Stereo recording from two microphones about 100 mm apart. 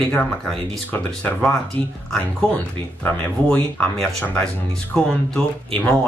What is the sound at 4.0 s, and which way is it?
Speech, 5° left (ahead or behind).